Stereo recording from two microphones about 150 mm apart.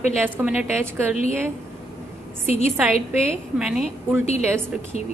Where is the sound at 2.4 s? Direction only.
45° left (ahead or behind).